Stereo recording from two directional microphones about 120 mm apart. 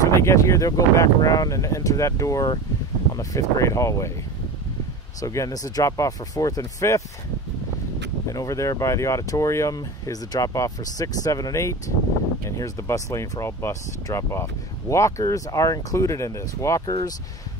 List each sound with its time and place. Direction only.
0.1 s speech: 25° left (ahead or behind)
5.2 s speech: 25° left (ahead or behind)
8.3 s speech: 25° left (ahead or behind)